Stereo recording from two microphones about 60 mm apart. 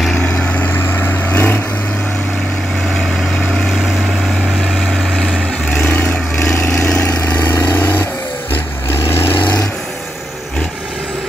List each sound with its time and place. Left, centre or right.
0.7 s vehicle: left
6.5 s vehicle: left